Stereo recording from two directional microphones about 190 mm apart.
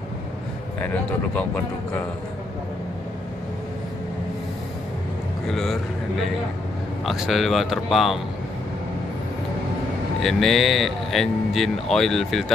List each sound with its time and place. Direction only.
1.3 s speech: 5° left (ahead or behind)
5.5 s speech: centre (ahead or behind)
7.1 s speech: centre (ahead or behind)
10.2 s speech: centre (ahead or behind)